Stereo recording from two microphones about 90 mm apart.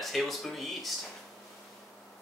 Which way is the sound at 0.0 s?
Centre (ahead or behind).